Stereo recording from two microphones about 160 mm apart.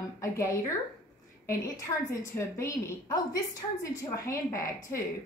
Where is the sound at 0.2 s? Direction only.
20° left (ahead or behind).